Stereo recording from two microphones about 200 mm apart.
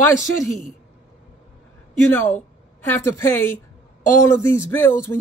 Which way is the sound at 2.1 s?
10° left (ahead or behind).